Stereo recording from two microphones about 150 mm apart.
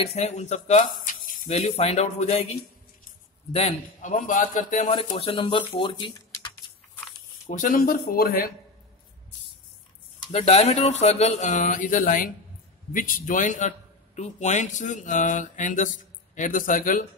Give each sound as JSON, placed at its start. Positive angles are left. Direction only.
{"t": 0.0, "sound": "speech", "side_deg": 45}
{"t": 1.0, "sound": "snake", "side_deg": 65}
{"t": 1.5, "sound": "speech", "side_deg": 45}
{"t": 3.5, "sound": "speech", "side_deg": 45}
{"t": 4.1, "sound": "a man's voice", "side_deg": 60}
{"t": 5.2, "sound": "speech", "side_deg": 35}
{"t": 7.4, "sound": "speech", "side_deg": 55}
{"t": 10.3, "sound": "a man's voice", "side_deg": 45}